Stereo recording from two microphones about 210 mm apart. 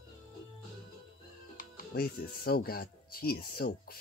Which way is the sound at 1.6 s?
45° left (ahead or behind).